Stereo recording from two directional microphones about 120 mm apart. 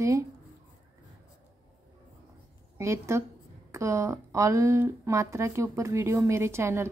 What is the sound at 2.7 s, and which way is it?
A woman's voice, 25° right (ahead or behind).